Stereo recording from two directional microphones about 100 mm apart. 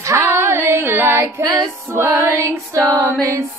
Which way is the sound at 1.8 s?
25° right (ahead or behind).